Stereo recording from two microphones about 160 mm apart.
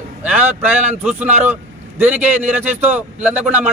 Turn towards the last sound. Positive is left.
turn(degrees=-10)  # may be behind; listen again after turning